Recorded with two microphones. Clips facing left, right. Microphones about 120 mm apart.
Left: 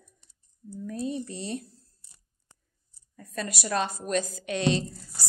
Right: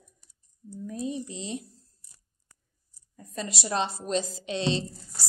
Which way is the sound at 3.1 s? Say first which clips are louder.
Left 1 dB; 20° right (ahead or behind).